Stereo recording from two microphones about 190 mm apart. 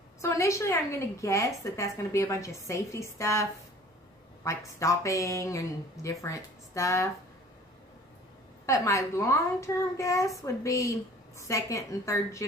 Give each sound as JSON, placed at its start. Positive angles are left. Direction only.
{"t": 0.2, "sound": "a woman's voice", "side_deg": 15}
{"t": 4.5, "sound": "a woman's voice", "side_deg": 15}
{"t": 8.6, "sound": "a woman's voice", "side_deg": 15}